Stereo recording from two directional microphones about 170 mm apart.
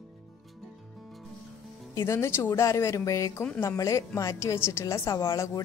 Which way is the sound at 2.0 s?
15° left (ahead or behind).